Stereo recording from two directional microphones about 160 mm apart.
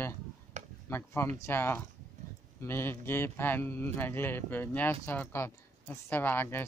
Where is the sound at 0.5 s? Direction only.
45° right (ahead or behind).